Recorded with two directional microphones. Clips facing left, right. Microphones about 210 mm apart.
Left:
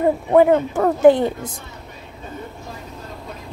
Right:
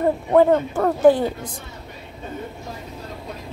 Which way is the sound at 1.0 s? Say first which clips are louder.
Left 2 dB; 20° left (ahead or behind).